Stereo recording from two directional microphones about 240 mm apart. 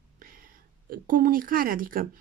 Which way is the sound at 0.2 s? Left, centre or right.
Right.